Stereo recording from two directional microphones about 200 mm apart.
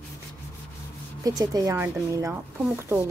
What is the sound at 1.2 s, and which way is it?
Speech, 20° right (ahead or behind).